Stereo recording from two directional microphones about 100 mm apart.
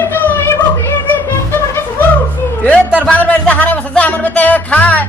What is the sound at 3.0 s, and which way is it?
Music, 15° left (ahead or behind).